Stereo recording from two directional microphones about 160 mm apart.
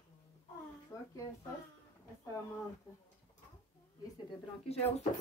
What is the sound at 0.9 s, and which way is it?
Speech, 20° left (ahead or behind).